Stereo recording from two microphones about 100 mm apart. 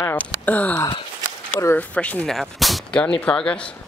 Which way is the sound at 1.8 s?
15° left (ahead or behind).